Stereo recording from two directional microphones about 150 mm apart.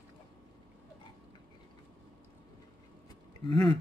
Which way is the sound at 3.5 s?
30° left (ahead or behind).